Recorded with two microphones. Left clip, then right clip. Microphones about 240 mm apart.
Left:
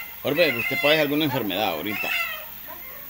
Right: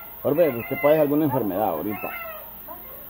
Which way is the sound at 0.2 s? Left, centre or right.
Centre.